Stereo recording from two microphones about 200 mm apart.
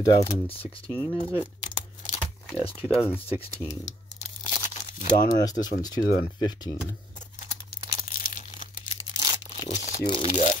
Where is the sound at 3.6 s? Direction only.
35° left (ahead or behind).